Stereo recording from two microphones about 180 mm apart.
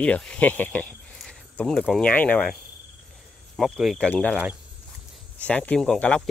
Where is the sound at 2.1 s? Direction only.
10° left (ahead or behind).